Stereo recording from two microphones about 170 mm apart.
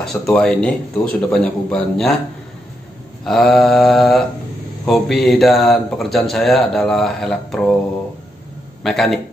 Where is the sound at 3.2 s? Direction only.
Centre (ahead or behind).